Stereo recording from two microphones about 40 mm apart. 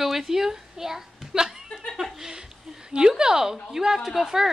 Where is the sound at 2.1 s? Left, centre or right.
Centre.